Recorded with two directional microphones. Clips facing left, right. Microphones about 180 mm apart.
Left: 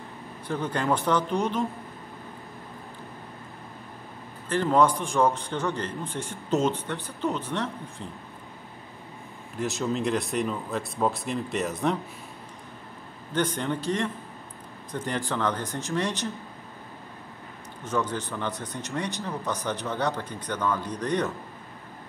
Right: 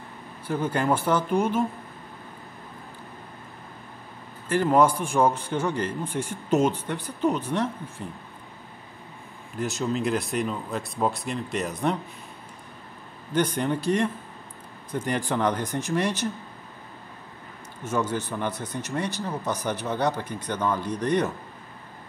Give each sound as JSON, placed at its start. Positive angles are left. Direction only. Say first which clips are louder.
{"t": 0.5, "sound": "speech", "louder": "right 2 dB", "side_deg": -5}
{"t": 4.5, "sound": "speech", "louder": "right 2 dB", "side_deg": -10}
{"t": 9.6, "sound": "speech", "louder": "right 1 dB", "side_deg": 0}
{"t": 13.3, "sound": "speech", "louder": "right 3 dB", "side_deg": -15}
{"t": 17.8, "sound": "speech", "louder": "right 2 dB", "side_deg": -10}
{"t": 18.5, "sound": "speech", "louder": "right 2 dB", "side_deg": 15}
{"t": 19.2, "sound": "speech", "louder": "right 2 dB", "side_deg": -15}